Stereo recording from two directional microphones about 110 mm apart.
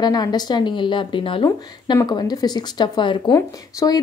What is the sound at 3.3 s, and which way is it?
Speech, 30° left (ahead or behind).